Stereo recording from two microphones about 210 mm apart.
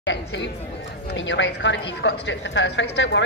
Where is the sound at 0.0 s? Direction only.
55° left (ahead or behind).